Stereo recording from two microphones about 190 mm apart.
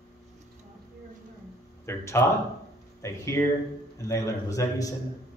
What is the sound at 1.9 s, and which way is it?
A man's voice, 15° left (ahead or behind).